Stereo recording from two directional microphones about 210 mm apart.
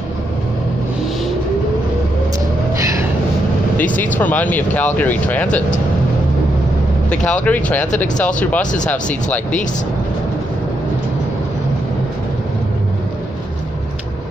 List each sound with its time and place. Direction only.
3.9 s speech: 10° left (ahead or behind)
7.1 s speech: 5° left (ahead or behind)